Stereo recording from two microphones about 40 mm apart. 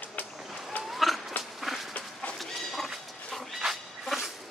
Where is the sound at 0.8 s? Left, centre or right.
Centre.